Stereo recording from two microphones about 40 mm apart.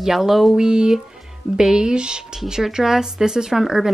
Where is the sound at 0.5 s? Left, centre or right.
Centre.